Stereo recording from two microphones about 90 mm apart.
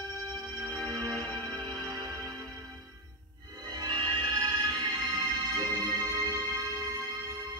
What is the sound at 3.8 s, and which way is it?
Music, 55° right (ahead or behind).